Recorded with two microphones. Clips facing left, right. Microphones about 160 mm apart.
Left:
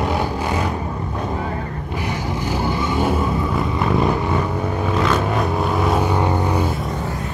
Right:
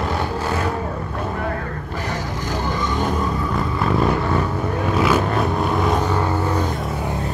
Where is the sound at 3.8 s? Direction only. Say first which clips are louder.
Even; centre (ahead or behind).